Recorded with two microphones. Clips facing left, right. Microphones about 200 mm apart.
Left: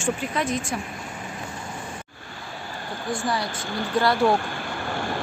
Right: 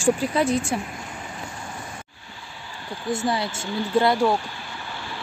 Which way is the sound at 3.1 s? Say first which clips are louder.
Right 2 dB; 25° right (ahead or behind).